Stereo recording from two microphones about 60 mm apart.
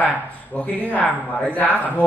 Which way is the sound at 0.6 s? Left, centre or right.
Left.